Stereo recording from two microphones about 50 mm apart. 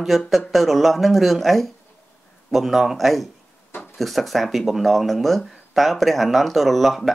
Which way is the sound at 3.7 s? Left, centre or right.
Left.